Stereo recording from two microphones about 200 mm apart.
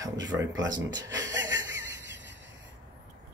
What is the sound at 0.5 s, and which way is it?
Speech, 20° right (ahead or behind).